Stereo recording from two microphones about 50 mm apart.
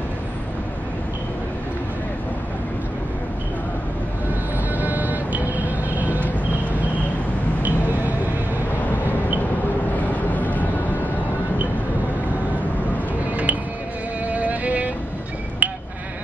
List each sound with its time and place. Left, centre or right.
4.7 s vehicle: right
7.6 s vehicle: right
9.9 s vehicle: left
13.3 s music: right
14.2 s violin: right
15.6 s sheep: right